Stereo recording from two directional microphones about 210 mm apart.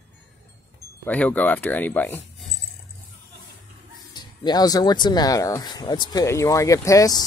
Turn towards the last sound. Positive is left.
turn(degrees=15)  # may be behind; listen again after turning